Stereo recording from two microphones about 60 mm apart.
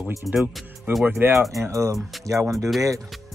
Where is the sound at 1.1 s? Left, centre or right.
Right.